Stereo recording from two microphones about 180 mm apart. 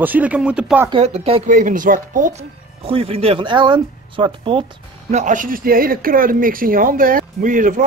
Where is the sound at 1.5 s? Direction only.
50° right (ahead or behind).